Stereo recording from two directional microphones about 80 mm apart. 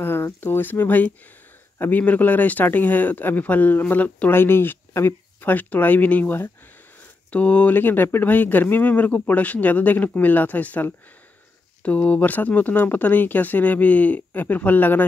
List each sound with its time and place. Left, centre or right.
0.0 s speech: left